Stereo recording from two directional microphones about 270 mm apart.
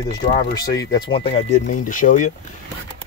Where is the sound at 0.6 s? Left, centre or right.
Centre.